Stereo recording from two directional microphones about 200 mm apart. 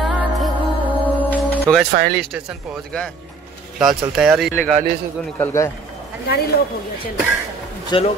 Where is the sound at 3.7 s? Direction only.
Centre (ahead or behind).